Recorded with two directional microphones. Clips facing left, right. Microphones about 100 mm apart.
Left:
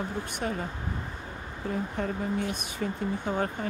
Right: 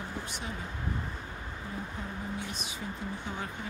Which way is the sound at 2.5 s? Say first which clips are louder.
Left 6 dB; 50° left (ahead or behind).